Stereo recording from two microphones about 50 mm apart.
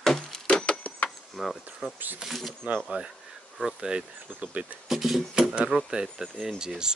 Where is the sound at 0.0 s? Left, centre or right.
Centre.